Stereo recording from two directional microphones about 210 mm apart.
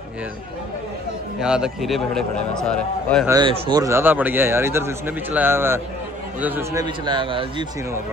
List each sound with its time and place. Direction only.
1.4 s a man's voice: 5° right (ahead or behind)
3.3 s a man's voice: 20° right (ahead or behind)